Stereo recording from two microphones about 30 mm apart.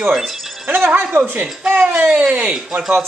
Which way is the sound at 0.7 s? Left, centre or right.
Right.